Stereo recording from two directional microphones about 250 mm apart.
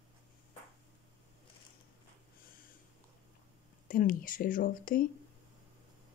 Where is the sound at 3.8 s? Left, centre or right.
Left.